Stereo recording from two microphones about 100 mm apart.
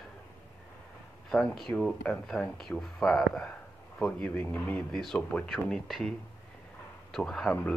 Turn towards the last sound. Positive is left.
turn(degrees=20)  # may be behind; listen again after turning